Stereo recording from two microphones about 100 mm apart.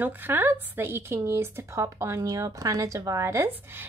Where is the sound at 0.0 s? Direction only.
20° right (ahead or behind).